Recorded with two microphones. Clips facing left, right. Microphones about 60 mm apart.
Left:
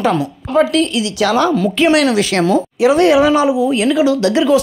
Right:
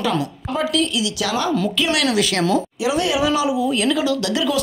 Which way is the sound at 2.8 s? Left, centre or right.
Left.